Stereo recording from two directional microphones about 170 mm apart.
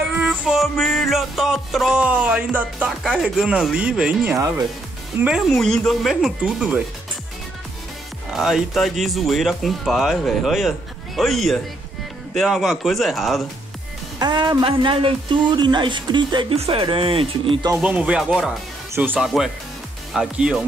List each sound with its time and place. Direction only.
0.2 s music: 5° right (ahead or behind)
5.1 s speech: 10° right (ahead or behind)
5.5 s speech: centre (ahead or behind)
8.3 s speech: centre (ahead or behind)
14.2 s speech: 25° right (ahead or behind)
17.8 s speech: 5° right (ahead or behind)